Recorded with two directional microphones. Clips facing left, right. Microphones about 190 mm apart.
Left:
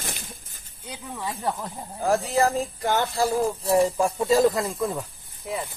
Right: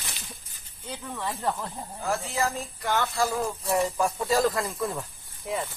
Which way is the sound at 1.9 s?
40° left (ahead or behind).